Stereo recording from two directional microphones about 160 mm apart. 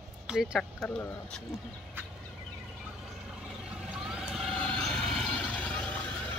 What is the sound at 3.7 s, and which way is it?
Vehicle, 5° right (ahead or behind).